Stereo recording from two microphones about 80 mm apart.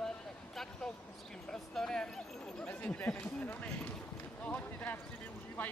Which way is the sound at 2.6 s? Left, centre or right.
Centre.